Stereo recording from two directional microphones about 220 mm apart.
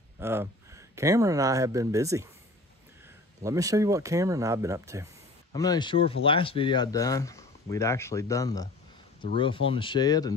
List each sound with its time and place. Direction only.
0.2 s speech: 10° right (ahead or behind)
3.4 s speech: 15° right (ahead or behind)
5.5 s speech: 20° left (ahead or behind)